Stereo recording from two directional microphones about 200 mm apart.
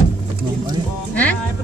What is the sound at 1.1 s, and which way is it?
Music, 10° left (ahead or behind).